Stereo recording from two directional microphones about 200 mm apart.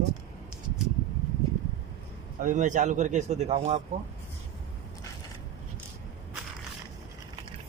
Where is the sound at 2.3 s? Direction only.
40° right (ahead or behind).